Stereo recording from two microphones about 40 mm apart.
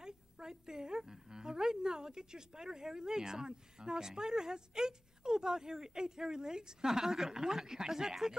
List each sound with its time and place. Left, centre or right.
0.0 s a woman's voice: centre